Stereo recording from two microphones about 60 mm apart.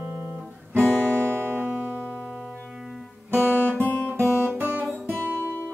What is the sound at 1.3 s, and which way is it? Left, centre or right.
Music, right.